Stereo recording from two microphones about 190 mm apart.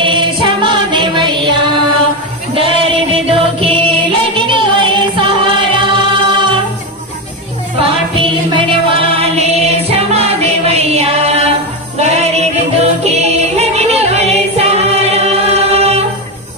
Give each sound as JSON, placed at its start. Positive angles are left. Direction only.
{"t": 0.0, "sound": "music", "side_deg": -25}
{"t": 2.5, "sound": "music", "side_deg": -30}
{"t": 7.8, "sound": "music", "side_deg": -30}